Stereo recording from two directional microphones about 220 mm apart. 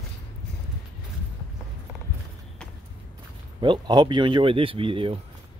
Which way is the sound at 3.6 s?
20° right (ahead or behind).